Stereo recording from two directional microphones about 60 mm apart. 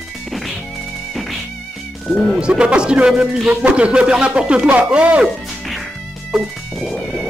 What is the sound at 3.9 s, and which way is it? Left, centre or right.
Speech, centre.